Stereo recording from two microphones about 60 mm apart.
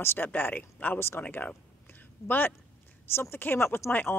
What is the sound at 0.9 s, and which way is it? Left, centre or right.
Speech, left.